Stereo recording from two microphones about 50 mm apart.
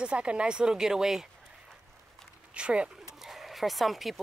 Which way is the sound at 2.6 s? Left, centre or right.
Right.